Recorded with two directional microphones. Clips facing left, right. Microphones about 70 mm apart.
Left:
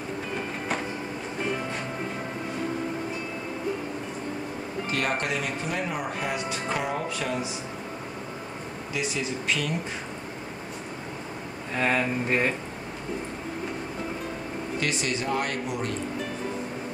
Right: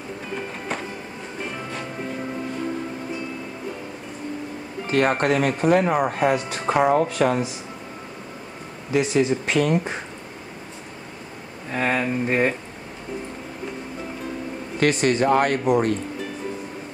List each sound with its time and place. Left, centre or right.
4.9 s speech: right
8.9 s speech: right
11.7 s speech: centre
14.8 s speech: right